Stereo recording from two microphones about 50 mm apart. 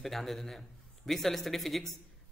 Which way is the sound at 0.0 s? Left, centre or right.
Centre.